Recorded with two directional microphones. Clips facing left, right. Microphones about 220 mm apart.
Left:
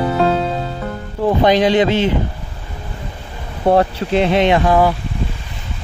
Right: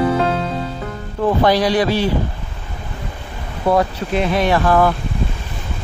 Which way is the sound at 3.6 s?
25° left (ahead or behind).